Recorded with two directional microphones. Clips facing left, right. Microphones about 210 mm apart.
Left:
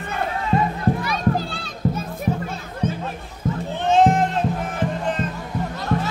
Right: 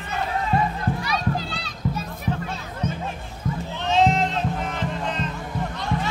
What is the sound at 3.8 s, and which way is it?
Music, 50° left (ahead or behind).